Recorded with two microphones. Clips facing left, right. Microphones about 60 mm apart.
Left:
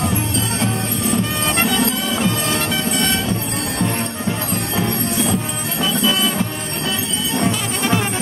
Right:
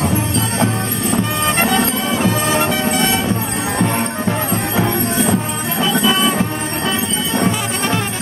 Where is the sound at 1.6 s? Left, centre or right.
Right.